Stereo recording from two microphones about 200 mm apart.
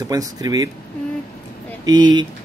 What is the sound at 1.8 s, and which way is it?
Speech, 20° right (ahead or behind).